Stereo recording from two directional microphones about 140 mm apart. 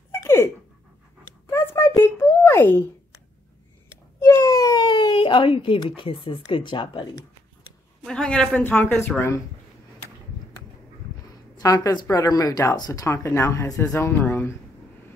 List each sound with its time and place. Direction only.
0.1 s dog: 20° left (ahead or behind)
1.5 s a sound: 20° left (ahead or behind)
4.2 s speech: 20° left (ahead or behind)
8.0 s speech: 5° left (ahead or behind)
11.5 s speech: 25° left (ahead or behind)